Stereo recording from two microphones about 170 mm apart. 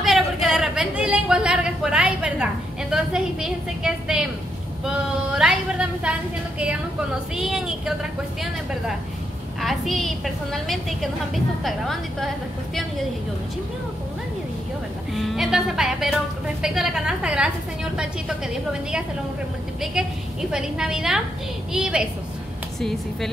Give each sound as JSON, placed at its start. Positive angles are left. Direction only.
{"t": 0.0, "sound": "a sound", "side_deg": 0}
{"t": 7.3, "sound": "a woman's voice", "side_deg": 0}
{"t": 15.1, "sound": "a woman's voice", "side_deg": 0}
{"t": 18.7, "sound": "a woman's voice", "side_deg": -5}